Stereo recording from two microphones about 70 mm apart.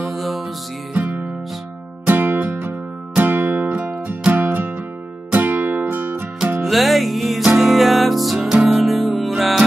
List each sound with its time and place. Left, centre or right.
0.0 s music: centre
2.0 s music: right
6.6 s music: centre